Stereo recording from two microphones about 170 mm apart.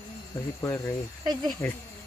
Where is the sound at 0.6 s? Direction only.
15° left (ahead or behind).